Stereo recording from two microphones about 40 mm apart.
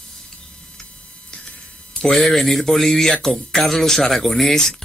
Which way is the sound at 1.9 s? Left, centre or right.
Left.